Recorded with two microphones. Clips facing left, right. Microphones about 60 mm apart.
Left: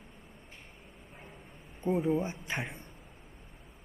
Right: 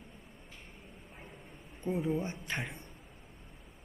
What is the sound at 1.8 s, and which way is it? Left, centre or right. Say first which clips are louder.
Speech: left 4 dB; centre.